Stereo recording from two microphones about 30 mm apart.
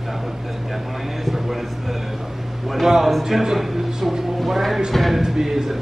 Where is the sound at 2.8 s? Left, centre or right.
Centre.